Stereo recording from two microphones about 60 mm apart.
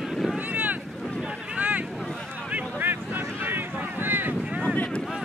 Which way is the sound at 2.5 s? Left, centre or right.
Right.